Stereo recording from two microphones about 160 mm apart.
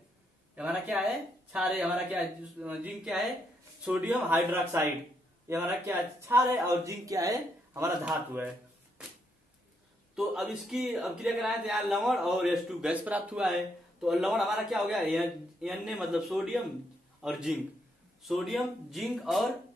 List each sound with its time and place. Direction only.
0.6 s speech: 5° right (ahead or behind)
8.0 s speech: 10° right (ahead or behind)
10.1 s a man's voice: centre (ahead or behind)